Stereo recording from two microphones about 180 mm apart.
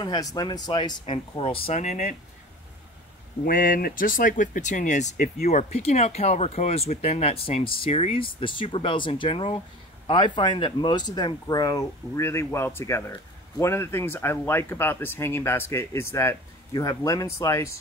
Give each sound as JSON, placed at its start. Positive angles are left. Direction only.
{"t": 0.0, "sound": "speech", "side_deg": 20}
{"t": 3.4, "sound": "speech", "side_deg": 50}
{"t": 5.5, "sound": "speech", "side_deg": 35}